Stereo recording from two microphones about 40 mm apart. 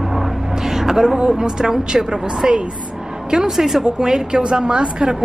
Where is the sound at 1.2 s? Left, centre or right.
Centre.